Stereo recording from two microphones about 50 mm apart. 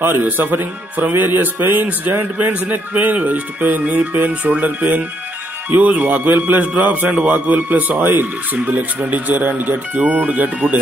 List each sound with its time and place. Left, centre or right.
0.0 s a man's voice: right